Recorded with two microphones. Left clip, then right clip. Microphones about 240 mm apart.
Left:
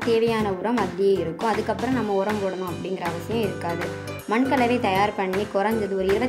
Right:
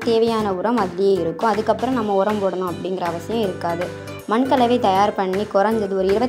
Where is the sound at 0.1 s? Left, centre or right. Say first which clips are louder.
Right 4 dB; centre.